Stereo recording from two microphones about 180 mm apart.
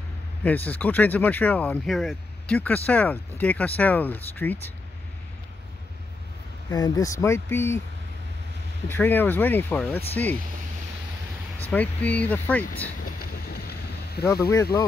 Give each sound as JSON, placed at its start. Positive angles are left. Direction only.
{"t": 0.4, "sound": "speech", "side_deg": 10}
{"t": 6.7, "sound": "speech", "side_deg": 20}
{"t": 8.8, "sound": "speech", "side_deg": 10}
{"t": 11.7, "sound": "speech", "side_deg": 10}
{"t": 13.0, "sound": "boat", "side_deg": 60}
{"t": 14.5, "sound": "speech", "side_deg": 20}